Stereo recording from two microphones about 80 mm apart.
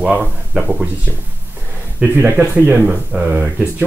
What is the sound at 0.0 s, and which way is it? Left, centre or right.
Speech, centre.